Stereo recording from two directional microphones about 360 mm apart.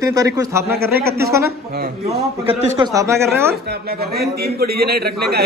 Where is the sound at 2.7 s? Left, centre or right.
Centre.